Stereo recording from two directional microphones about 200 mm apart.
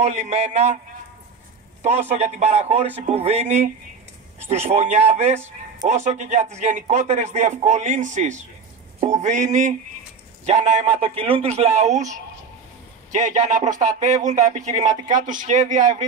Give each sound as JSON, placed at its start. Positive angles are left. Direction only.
{"t": 0.0, "sound": "speech", "side_deg": -35}
{"t": 1.8, "sound": "speech", "side_deg": -35}
{"t": 4.6, "sound": "speech", "side_deg": -35}